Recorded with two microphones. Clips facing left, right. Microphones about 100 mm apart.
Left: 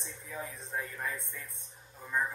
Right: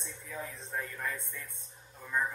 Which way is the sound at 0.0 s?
5° left (ahead or behind).